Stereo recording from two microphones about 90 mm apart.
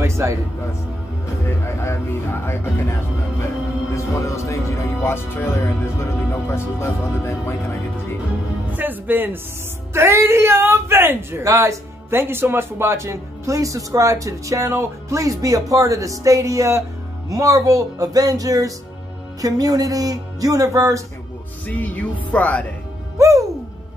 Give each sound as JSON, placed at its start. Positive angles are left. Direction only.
{"t": 0.0, "sound": "music", "side_deg": -30}
{"t": 1.4, "sound": "speech", "side_deg": 30}
{"t": 8.7, "sound": "speech", "side_deg": -20}
{"t": 21.6, "sound": "music", "side_deg": 15}
{"t": 23.1, "sound": "music", "side_deg": -35}